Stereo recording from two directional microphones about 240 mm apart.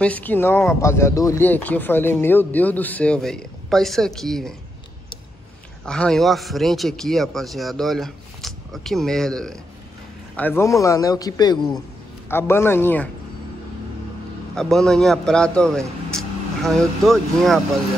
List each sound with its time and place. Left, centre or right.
0.0 s speech: centre
5.9 s speech: centre
14.5 s speech: centre